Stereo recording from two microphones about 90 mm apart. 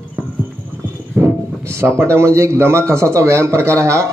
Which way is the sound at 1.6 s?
30° right (ahead or behind).